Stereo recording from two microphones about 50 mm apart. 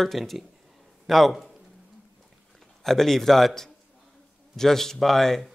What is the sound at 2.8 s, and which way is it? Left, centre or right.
Speech, centre.